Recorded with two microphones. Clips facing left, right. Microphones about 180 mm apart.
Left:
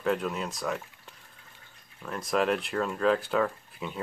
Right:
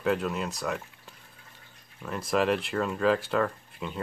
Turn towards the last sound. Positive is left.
turn(degrees=0)  # may be behind; listen again after turning